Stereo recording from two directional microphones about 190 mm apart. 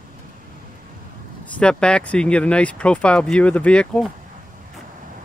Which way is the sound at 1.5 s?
5° left (ahead or behind).